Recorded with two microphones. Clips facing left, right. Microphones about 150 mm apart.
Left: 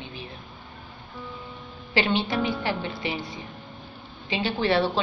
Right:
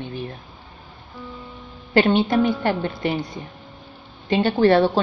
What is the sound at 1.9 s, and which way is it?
A woman's voice, 50° right (ahead or behind).